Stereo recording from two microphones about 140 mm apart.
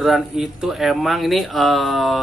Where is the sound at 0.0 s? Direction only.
Centre (ahead or behind).